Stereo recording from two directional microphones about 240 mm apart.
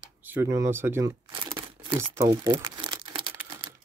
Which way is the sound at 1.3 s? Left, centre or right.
Right.